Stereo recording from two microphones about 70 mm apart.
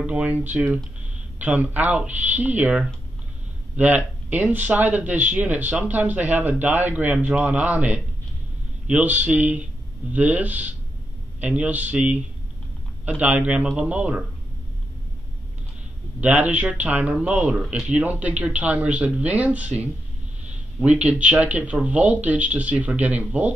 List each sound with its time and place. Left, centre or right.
0.0 s speech: right
13.2 s speech: right
16.2 s speech: right; by 17.9 s centre
17.9 s speech: right